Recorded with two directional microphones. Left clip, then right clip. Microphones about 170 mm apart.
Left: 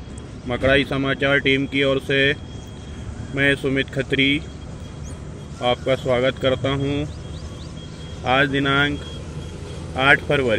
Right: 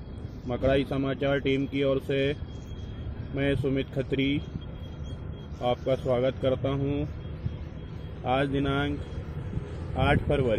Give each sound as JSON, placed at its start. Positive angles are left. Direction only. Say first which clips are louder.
{"t": 0.5, "sound": "speech", "louder": "left 8 dB", "side_deg": 0}
{"t": 3.3, "sound": "speech", "louder": "left 9 dB", "side_deg": 0}
{"t": 5.6, "sound": "speech", "louder": "left 7 dB", "side_deg": 0}
{"t": 8.2, "sound": "speech", "louder": "left 8 dB", "side_deg": 0}
{"t": 9.9, "sound": "speech", "louder": "left 10 dB", "side_deg": 0}